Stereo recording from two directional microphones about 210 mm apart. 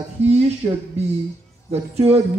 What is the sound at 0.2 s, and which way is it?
Speech, 30° right (ahead or behind).